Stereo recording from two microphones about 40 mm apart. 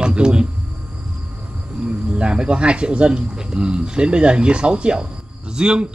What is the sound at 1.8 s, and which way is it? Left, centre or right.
Speech, right.